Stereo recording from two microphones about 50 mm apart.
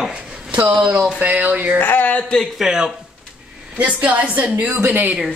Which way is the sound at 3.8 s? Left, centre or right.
Right.